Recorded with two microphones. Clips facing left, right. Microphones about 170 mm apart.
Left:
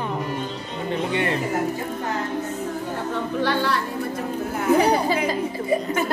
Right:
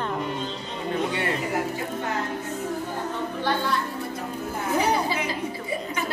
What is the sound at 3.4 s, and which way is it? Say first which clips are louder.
Music: left 3 dB; 70° left (ahead or behind).